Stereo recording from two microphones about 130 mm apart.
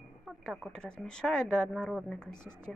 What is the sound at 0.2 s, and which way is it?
Speech, centre (ahead or behind).